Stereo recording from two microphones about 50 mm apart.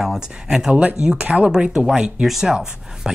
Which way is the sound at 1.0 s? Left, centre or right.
Right.